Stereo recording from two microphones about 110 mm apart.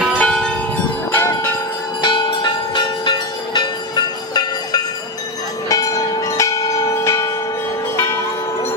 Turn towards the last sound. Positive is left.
turn(degrees=25)  # may be behind; listen again after turning